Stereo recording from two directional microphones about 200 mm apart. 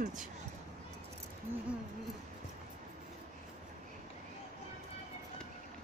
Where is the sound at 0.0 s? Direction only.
40° right (ahead or behind).